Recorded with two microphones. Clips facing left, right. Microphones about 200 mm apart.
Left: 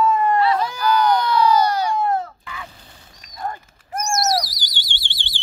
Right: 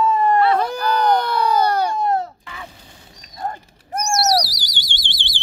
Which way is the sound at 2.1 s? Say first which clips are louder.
Right 2 dB; 30° right (ahead or behind).